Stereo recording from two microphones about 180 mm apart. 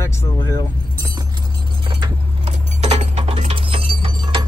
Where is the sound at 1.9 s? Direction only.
25° right (ahead or behind).